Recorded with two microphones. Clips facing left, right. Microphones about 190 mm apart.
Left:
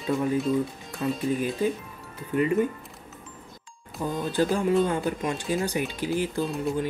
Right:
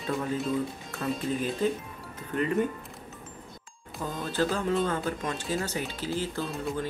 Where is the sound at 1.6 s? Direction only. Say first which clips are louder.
Left 1 dB; 10° left (ahead or behind).